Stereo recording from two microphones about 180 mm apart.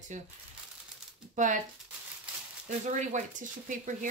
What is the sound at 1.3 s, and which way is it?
Speech, 45° right (ahead or behind).